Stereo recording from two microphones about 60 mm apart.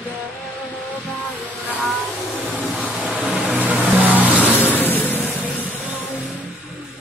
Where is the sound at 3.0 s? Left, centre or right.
Right.